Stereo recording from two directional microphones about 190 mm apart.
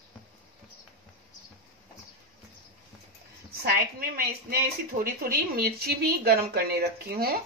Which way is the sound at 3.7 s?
50° right (ahead or behind).